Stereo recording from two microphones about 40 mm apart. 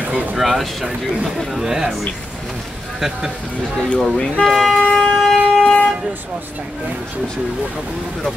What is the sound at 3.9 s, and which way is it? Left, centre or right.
Speech, left.